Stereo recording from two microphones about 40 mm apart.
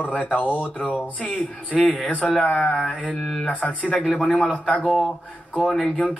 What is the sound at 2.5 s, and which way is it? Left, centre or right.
Mantra, centre.